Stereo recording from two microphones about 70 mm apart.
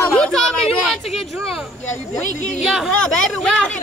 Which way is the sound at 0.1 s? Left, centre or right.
Centre.